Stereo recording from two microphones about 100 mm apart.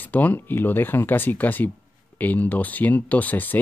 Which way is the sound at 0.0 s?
15° left (ahead or behind).